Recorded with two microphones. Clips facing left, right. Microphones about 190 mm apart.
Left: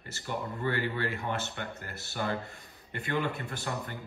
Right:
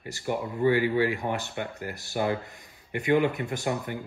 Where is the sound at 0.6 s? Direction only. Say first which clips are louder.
Right 10 dB; 15° right (ahead or behind).